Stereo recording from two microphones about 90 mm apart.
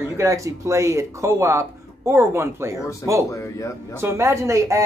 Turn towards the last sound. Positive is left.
turn(degrees=-35)  # may be behind; listen again after turning